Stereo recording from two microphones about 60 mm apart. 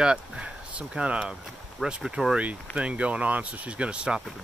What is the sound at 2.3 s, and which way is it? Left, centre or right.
Speech, centre.